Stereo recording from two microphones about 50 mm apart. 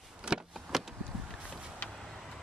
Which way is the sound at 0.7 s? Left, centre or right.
Centre.